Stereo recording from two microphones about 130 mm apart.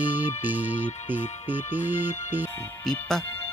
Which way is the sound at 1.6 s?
60° left (ahead or behind).